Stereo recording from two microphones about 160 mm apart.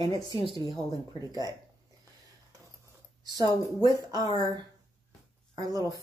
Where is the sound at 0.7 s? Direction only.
25° right (ahead or behind).